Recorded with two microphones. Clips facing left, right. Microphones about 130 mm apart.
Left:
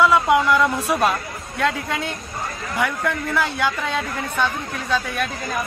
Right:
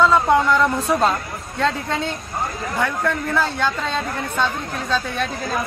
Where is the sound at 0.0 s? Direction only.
10° left (ahead or behind).